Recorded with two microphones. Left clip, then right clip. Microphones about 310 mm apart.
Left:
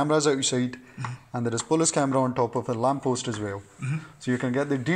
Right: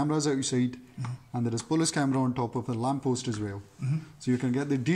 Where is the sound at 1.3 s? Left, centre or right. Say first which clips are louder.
Left 4 dB; right.